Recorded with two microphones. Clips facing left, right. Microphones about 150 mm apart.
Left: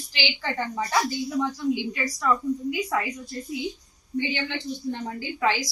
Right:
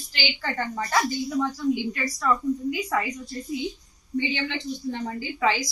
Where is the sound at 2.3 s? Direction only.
5° left (ahead or behind).